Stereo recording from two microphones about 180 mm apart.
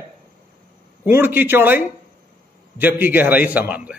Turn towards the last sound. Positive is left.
turn(degrees=-5)  # may be behind; listen again after turning